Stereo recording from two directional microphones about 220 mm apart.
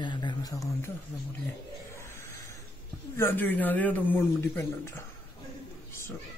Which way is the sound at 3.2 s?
10° left (ahead or behind).